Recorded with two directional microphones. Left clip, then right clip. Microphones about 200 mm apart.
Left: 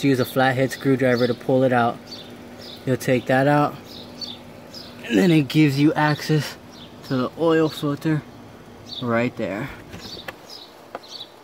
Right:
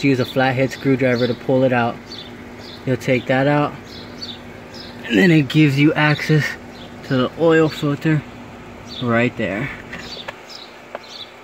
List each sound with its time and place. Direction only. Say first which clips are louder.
0.0 s speech: right 2 dB; 15° left (ahead or behind)
5.5 s speech: right 3 dB; 5° left (ahead or behind)